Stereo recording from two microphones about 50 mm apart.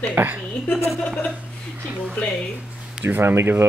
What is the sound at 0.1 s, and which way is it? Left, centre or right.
Speech, right.